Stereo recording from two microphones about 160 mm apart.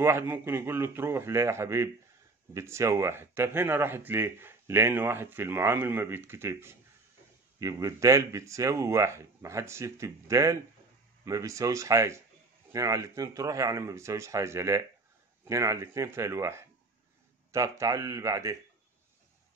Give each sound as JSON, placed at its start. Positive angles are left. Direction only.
{"t": 0.0, "sound": "speech", "side_deg": -15}